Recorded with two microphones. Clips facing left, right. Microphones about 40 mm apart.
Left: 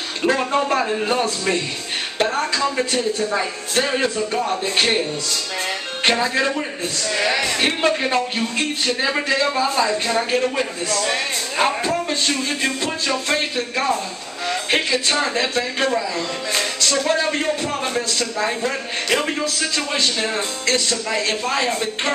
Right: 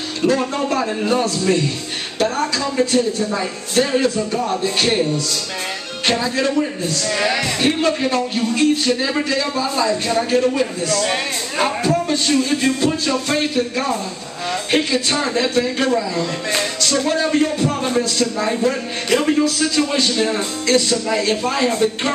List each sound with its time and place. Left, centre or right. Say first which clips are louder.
0.3 s a man's voice: left 1 dB; left
6.0 s a man's voice: even; left
7.2 s speech: even; centre
7.5 s a man's voice: right 1 dB; left; by 22.1 s centre